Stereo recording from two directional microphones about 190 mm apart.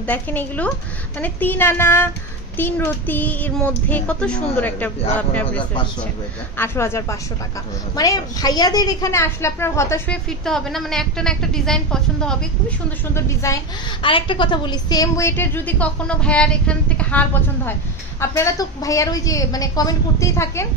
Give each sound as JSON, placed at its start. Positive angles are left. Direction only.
{"t": 0.0, "sound": "a woman's voice", "side_deg": 10}
{"t": 13.1, "sound": "a woman's voice", "side_deg": 15}
{"t": 14.0, "sound": "a woman's voice", "side_deg": 25}